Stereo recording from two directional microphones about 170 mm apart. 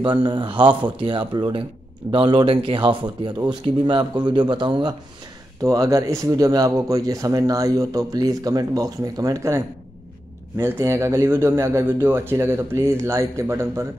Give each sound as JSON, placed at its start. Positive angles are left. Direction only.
{"t": 0.0, "sound": "speech", "side_deg": -30}
{"t": 10.6, "sound": "a man's voice", "side_deg": -15}